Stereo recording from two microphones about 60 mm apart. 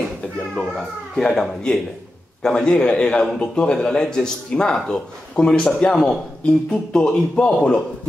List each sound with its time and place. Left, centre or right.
0.6 s speech: centre
7.4 s a man's voice: left